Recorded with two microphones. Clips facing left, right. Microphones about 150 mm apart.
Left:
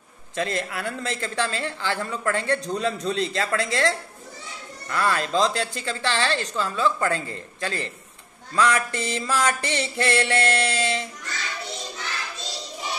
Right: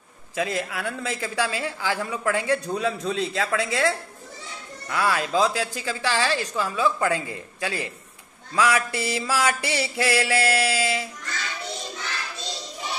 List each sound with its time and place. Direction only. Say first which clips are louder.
0.4 s a woman's voice: even; 5° right (ahead or behind)